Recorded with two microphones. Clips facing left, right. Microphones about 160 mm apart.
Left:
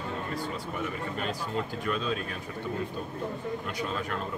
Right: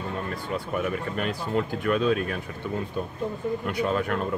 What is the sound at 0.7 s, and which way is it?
Speech, 60° right (ahead or behind).